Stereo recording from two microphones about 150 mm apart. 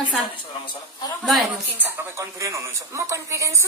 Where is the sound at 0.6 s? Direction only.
25° left (ahead or behind).